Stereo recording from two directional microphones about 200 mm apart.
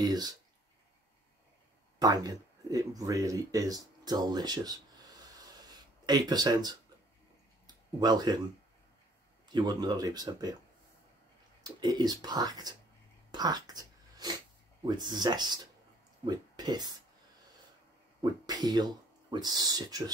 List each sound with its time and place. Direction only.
0.0 s speech: 20° right (ahead or behind)
2.0 s speech: 20° right (ahead or behind)
7.6 s a sound: 20° right (ahead or behind)
9.5 s speech: 20° right (ahead or behind)
11.6 s speech: 20° right (ahead or behind)
13.3 s a sound: 20° right (ahead or behind)
14.8 s speech: 20° right (ahead or behind)
18.2 s speech: 20° right (ahead or behind)